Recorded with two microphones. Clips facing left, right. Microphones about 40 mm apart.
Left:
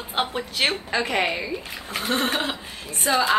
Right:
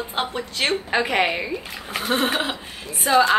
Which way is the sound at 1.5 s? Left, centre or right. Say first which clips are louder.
Right 2 dB; centre.